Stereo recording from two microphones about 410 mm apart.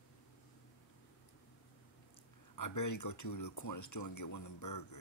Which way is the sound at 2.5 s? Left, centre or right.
Left.